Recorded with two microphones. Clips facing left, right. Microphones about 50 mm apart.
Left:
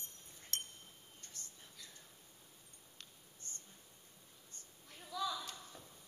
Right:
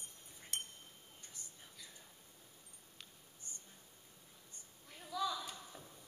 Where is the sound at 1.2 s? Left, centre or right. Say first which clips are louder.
Left 1 dB; centre.